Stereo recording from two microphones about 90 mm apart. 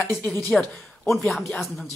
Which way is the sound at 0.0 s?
20° left (ahead or behind).